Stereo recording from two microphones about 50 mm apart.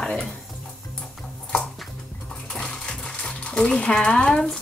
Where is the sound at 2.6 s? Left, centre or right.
Centre.